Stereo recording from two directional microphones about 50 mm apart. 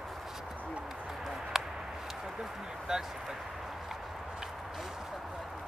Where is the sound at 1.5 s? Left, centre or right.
Centre.